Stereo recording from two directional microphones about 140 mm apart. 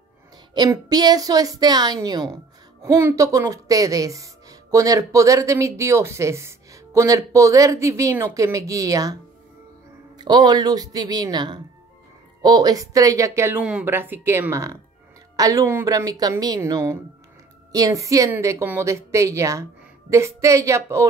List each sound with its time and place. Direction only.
0.6 s speech: 30° right (ahead or behind)
10.1 s speech: 30° right (ahead or behind)